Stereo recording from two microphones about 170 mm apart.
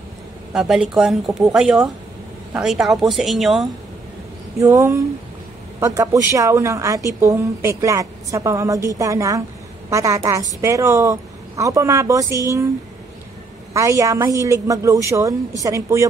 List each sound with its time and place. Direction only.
0.5 s speech: 5° right (ahead or behind)
4.6 s a woman's voice: 20° right (ahead or behind)
13.7 s a woman's voice: 20° right (ahead or behind)